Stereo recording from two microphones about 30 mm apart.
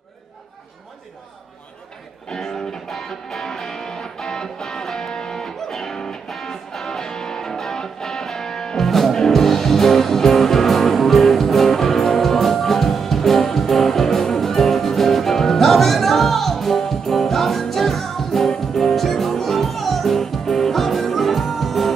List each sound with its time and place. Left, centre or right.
2.2 s music: centre